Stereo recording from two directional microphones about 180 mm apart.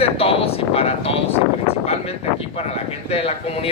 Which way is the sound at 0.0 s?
30° left (ahead or behind).